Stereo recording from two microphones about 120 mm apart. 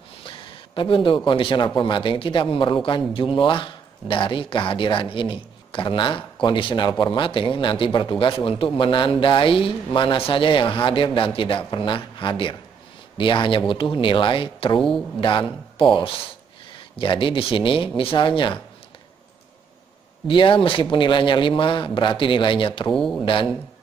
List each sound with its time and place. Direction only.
0.2 s speech: 50° left (ahead or behind)
14.8 s speech: 5° left (ahead or behind)
15.1 s speech: 45° left (ahead or behind)
20.2 s speech: 45° left (ahead or behind)
22.9 s speech: 5° left (ahead or behind)